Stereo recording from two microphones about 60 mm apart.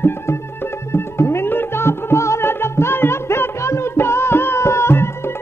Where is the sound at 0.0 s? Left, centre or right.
Left.